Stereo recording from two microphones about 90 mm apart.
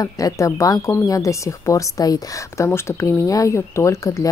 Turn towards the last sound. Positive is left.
turn(degrees=35)  # may be behind; listen again after turning